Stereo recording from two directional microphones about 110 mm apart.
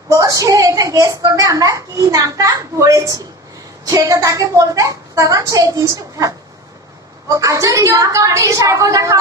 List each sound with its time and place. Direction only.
0.1 s a child's voice: 30° right (ahead or behind)
7.2 s a child's voice: 30° right (ahead or behind)